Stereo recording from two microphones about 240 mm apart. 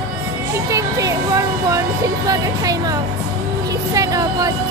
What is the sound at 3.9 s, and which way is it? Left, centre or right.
Speech, centre.